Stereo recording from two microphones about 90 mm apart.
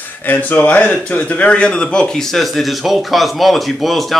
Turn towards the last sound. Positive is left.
turn(degrees=0)  # may be behind; listen again after turning